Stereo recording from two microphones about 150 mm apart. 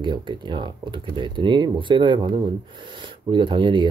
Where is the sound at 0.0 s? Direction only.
30° right (ahead or behind).